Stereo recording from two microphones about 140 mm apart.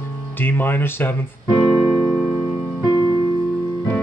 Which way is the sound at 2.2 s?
15° right (ahead or behind).